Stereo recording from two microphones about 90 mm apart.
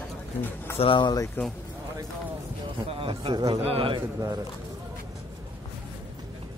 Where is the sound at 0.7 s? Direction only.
70° left (ahead or behind).